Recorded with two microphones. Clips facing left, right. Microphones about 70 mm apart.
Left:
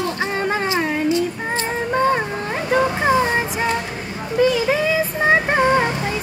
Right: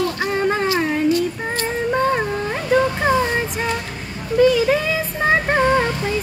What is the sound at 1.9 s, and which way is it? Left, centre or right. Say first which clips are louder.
Child singing: left 1 dB; centre.